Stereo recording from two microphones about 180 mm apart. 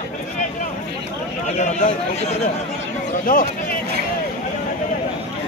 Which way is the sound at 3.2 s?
50° left (ahead or behind).